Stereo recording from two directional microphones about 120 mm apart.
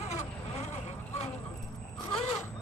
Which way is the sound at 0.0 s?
65° left (ahead or behind).